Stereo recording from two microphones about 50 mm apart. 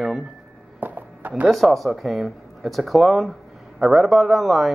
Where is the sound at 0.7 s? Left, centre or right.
Right.